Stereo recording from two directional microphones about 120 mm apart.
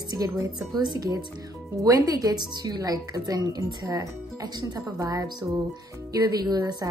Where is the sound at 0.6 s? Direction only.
35° right (ahead or behind).